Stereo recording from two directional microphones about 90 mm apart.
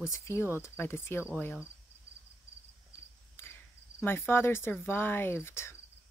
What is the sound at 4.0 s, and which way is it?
A woman's voice, 25° left (ahead or behind).